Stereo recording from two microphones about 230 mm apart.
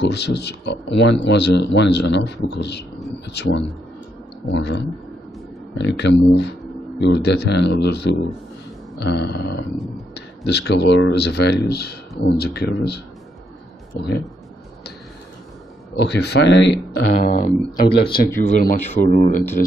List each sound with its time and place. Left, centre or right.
0.0 s speech: left
16.0 s speech: left
17.3 s speech: left
18.5 s speech: left